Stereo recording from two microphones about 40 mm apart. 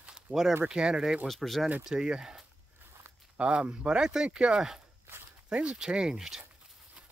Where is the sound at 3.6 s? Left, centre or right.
Right.